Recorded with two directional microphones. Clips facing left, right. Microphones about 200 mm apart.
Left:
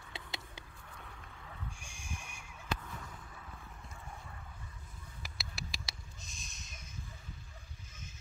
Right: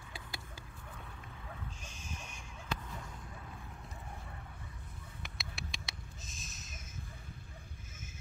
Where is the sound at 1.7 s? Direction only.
10° left (ahead or behind).